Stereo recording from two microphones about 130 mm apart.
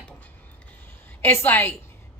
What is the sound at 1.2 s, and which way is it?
Speech, 15° left (ahead or behind).